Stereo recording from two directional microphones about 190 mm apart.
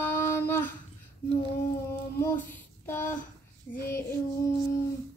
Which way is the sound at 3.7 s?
25° left (ahead or behind).